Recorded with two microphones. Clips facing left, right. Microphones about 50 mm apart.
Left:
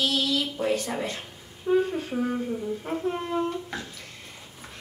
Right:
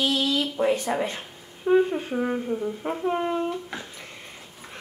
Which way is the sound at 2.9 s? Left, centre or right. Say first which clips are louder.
Right 3 dB; right.